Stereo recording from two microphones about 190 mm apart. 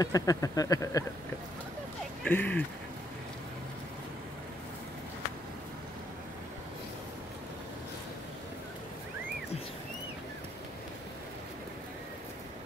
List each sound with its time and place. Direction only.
0.0 s speech: 20° left (ahead or behind)
2.2 s speech: 10° left (ahead or behind)